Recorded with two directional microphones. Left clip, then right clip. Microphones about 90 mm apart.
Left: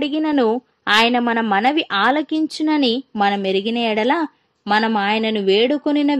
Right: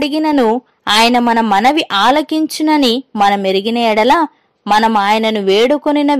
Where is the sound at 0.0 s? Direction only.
35° right (ahead or behind).